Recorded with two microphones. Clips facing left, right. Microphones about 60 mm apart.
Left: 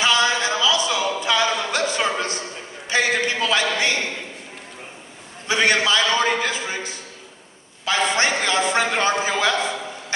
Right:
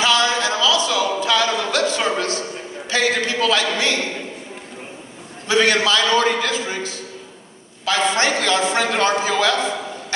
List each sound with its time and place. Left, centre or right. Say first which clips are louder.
0.0 s a sound: right 1 dB; centre
2.9 s a man's voice: right 1 dB; centre
5.5 s a man's voice: right 2 dB; centre
8.2 s a man's voice: right 2 dB; centre